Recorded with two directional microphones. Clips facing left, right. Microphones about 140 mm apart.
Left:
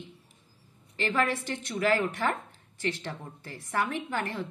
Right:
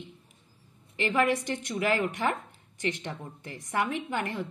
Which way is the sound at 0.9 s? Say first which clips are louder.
Right 2 dB; 15° right (ahead or behind).